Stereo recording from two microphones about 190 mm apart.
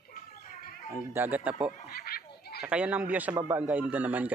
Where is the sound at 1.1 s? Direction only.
10° right (ahead or behind).